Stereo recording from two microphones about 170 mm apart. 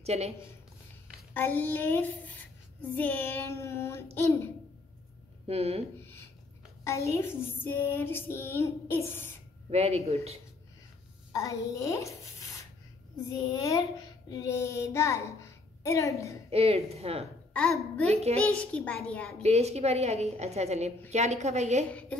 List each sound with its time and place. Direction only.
0.0 s a woman's voice: 40° right (ahead or behind)
1.3 s female singing: 10° left (ahead or behind)
5.5 s a woman's voice: 35° right (ahead or behind)
7.1 s female singing: 15° left (ahead or behind)
9.7 s a woman's voice: 40° right (ahead or behind)
11.3 s a child's voice: 20° left (ahead or behind)
16.4 s a woman's voice: 35° right (ahead or behind)
17.5 s a woman's voice: 5° left (ahead or behind)
18.0 s a woman's voice: 40° right (ahead or behind)
18.5 s female singing: 5° left (ahead or behind)
19.4 s a woman's voice: 40° right (ahead or behind)